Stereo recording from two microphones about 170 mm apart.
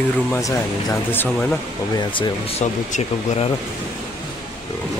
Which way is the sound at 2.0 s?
30° left (ahead or behind).